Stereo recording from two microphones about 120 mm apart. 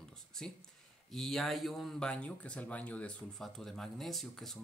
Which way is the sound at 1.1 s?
Centre (ahead or behind).